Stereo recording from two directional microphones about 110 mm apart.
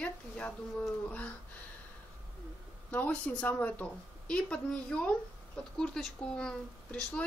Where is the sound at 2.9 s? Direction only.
15° left (ahead or behind).